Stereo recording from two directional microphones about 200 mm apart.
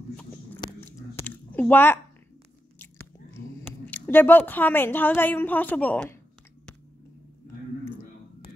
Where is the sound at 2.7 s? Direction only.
10° left (ahead or behind).